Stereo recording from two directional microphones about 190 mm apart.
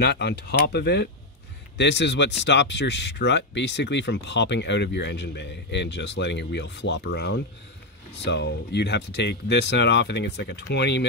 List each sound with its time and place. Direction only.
0.0 s speech: 60° left (ahead or behind)